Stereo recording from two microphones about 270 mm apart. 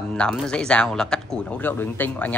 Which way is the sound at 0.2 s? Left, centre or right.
Centre.